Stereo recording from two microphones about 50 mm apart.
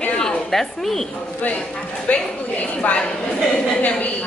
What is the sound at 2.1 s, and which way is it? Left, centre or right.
Speech, left.